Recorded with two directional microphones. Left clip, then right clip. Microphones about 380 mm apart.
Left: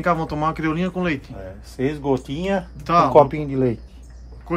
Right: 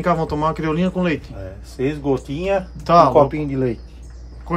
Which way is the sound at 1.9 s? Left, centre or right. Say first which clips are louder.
Even; centre.